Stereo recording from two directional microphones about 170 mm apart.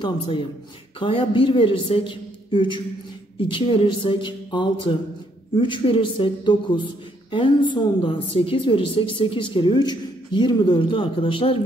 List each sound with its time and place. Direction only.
0.0 s a man's voice: 30° left (ahead or behind)